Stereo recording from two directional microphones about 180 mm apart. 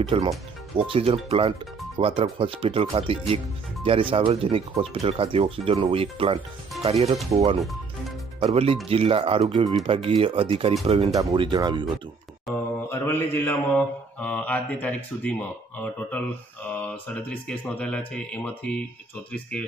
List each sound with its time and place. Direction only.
0.0 s speech: 30° right (ahead or behind)
8.4 s speech: 35° right (ahead or behind)
12.5 s mantra: centre (ahead or behind)
12.9 s speech: 10° left (ahead or behind)